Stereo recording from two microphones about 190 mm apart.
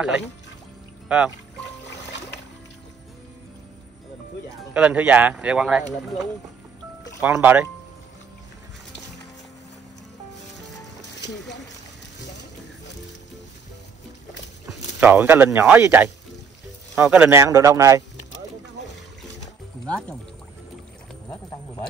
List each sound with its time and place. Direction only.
1.0 s speech: 5° right (ahead or behind)
4.7 s speech: 5° right (ahead or behind)
7.2 s speech: 10° right (ahead or behind)
11.1 s speech: 65° left (ahead or behind)
14.7 s speech: 10° right (ahead or behind)
19.9 s speech: 5° left (ahead or behind)